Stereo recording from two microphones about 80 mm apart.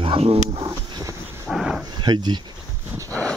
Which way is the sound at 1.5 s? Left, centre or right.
Centre.